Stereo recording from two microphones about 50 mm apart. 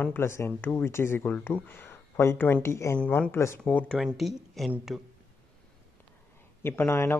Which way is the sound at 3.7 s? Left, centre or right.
Left.